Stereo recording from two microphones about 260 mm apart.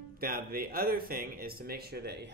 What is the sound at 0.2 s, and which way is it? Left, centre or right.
Speech, right.